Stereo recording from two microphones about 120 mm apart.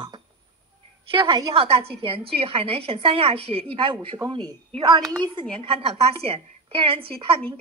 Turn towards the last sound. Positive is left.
turn(degrees=-50)  # may be behind; listen again after turning